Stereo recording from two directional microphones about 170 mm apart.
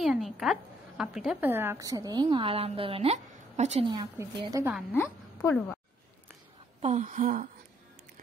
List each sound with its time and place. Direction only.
0.0 s a woman's voice: centre (ahead or behind); by 3.8 s 40° right (ahead or behind)
3.8 s a woman's voice: 25° right (ahead or behind)
4.9 s a woman's voice: 15° left (ahead or behind)
6.8 s a sound: 40° right (ahead or behind)